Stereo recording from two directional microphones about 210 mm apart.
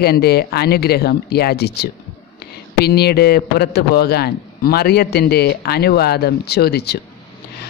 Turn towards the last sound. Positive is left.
turn(degrees=50)  # may be behind; listen again after turning